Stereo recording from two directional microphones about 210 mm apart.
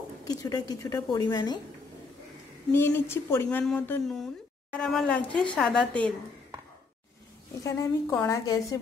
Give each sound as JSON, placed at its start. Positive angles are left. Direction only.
{"t": 0.3, "sound": "a woman's voice", "side_deg": 20}
{"t": 2.7, "sound": "a woman's voice", "side_deg": 10}
{"t": 7.6, "sound": "a woman's voice", "side_deg": 15}